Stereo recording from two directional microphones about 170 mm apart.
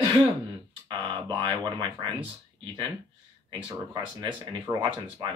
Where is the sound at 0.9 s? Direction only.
30° right (ahead or behind).